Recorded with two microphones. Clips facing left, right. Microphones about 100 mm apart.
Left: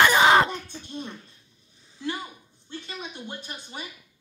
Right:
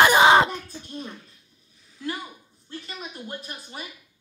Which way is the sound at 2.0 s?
Centre (ahead or behind).